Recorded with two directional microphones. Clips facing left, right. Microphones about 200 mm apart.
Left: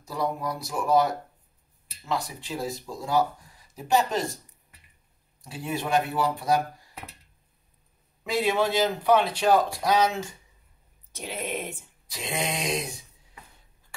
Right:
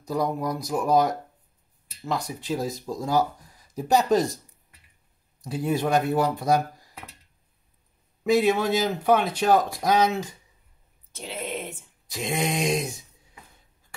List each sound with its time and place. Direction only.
0.1 s speech: 45° right (ahead or behind)
5.4 s speech: 40° right (ahead or behind)
8.2 s a man's voice: 50° right (ahead or behind)
11.1 s speech: 10° left (ahead or behind)
12.1 s speech: 45° right (ahead or behind)